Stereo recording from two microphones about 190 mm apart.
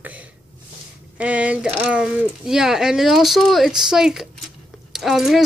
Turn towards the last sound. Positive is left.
turn(degrees=0)  # may be behind; listen again after turning